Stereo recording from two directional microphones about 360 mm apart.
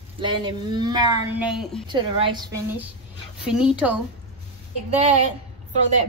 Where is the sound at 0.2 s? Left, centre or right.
Centre.